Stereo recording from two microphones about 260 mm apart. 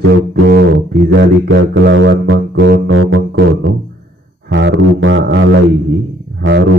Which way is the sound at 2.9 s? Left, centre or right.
Right.